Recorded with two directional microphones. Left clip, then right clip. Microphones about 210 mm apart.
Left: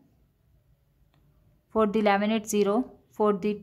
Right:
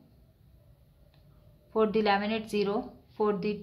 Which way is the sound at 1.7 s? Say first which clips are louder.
Left 2 dB; 40° left (ahead or behind).